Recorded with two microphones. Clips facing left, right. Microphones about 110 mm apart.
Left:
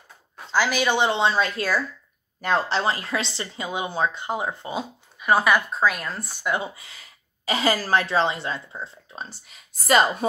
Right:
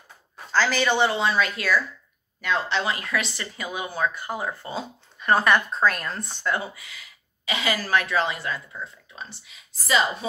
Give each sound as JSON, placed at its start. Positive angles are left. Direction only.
{"t": 0.5, "sound": "speech", "side_deg": 15}